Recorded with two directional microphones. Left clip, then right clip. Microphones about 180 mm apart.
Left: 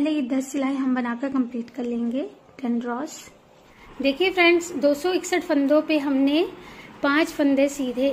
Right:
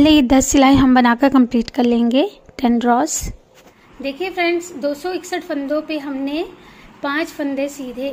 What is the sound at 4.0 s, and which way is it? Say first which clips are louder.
A woman's voice: left 1 dB; 10° left (ahead or behind).